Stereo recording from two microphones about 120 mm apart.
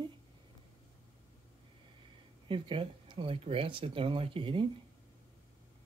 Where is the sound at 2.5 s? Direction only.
45° right (ahead or behind).